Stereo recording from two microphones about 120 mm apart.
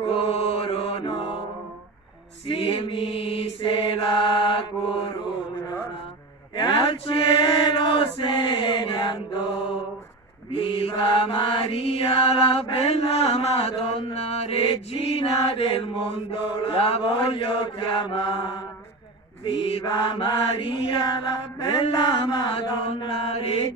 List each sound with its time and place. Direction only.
0.1 s mantra: 50° left (ahead or behind)
2.4 s mantra: 50° left (ahead or behind)
6.5 s mantra: 40° left (ahead or behind)
10.5 s mantra: 50° left (ahead or behind)
19.8 s mantra: 35° left (ahead or behind)
20.2 s mantra: 50° left (ahead or behind)